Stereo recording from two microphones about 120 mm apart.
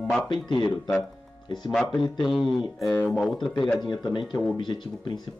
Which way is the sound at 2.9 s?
15° left (ahead or behind).